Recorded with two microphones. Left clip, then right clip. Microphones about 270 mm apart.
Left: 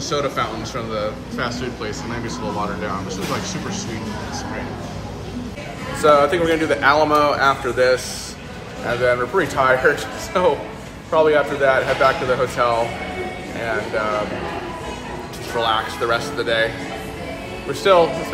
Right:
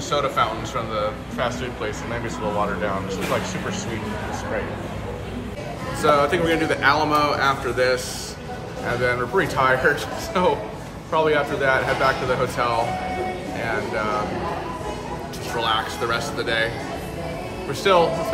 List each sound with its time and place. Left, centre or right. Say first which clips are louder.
0.1 s speech: right 1 dB; left
6.0 s a man's voice: left 4 dB; centre
15.6 s a man's voice: left 3 dB; centre
17.9 s a man's voice: left 3 dB; centre